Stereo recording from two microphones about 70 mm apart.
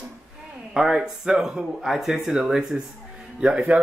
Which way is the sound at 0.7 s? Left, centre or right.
Centre.